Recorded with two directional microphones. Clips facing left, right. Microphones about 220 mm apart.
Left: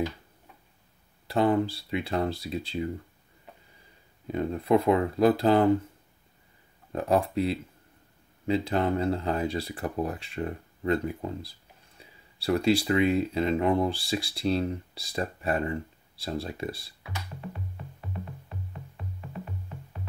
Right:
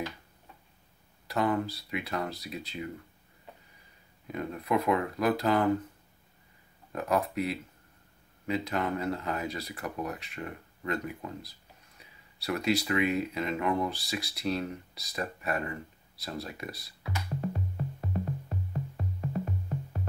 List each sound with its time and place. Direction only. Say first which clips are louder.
1.2 s speech: left 5 dB; 30° left (ahead or behind)
4.3 s speech: left 6 dB; 30° left (ahead or behind)
6.9 s speech: left 4 dB; 30° left (ahead or behind)
17.4 s music: right 6 dB; 40° right (ahead or behind)